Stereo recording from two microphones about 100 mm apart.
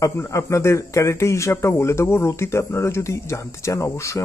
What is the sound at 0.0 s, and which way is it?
Speech, 30° left (ahead or behind).